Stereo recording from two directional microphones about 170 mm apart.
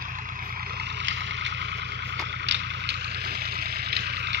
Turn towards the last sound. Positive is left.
turn(degrees=-80)